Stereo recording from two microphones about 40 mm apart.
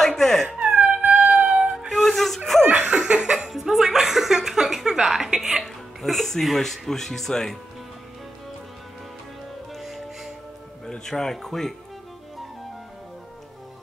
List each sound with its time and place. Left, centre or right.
0.0 s dog: centre
0.5 s music: right
1.0 s music: right
1.6 s music: centre
1.9 s flute: centre
2.7 s laughter: right
3.4 s speech: centre
9.8 s music: centre
11.1 s speech: centre